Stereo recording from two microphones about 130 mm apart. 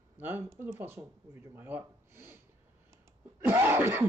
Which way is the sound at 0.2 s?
15° right (ahead or behind).